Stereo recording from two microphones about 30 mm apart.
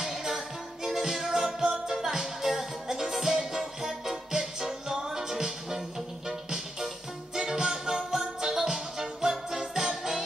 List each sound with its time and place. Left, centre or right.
0.0 s music: centre